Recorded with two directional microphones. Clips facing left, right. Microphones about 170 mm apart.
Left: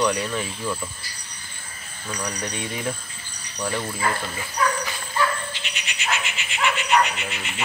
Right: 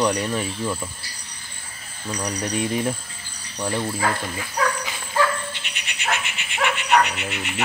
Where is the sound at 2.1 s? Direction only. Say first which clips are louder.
Right 3 dB; 5° right (ahead or behind).